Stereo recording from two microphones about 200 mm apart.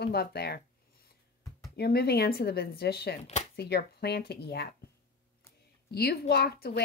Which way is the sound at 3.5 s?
55° left (ahead or behind).